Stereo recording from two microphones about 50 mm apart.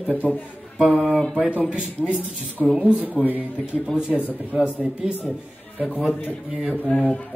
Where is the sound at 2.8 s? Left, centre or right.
Right.